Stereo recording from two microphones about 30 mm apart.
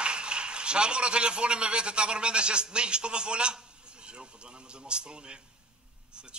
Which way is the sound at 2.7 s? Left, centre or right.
Right.